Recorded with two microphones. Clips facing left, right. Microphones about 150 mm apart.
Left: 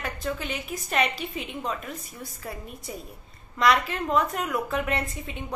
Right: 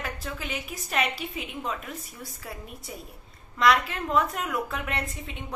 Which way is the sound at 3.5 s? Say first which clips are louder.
Even; centre (ahead or behind).